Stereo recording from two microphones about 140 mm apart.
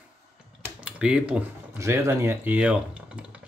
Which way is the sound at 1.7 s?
20° right (ahead or behind).